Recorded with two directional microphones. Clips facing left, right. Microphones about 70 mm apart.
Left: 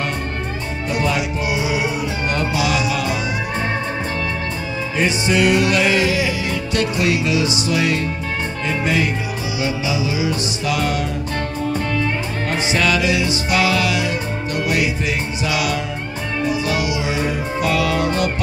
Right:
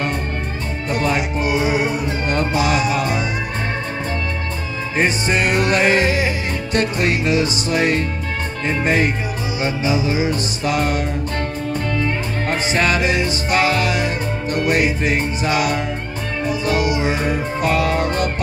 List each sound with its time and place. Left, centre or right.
0.8 s music: right
4.9 s music: right
12.4 s music: right